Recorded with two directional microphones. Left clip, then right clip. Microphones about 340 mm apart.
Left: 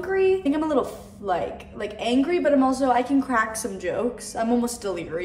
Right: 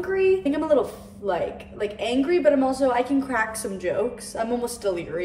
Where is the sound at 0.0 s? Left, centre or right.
Centre.